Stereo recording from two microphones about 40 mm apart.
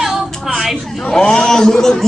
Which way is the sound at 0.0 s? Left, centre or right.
Centre.